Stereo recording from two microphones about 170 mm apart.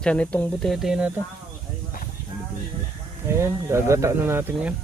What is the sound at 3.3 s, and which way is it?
Speech, 15° right (ahead or behind).